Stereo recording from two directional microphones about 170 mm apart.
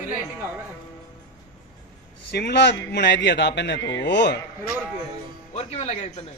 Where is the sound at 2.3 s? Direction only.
75° left (ahead or behind).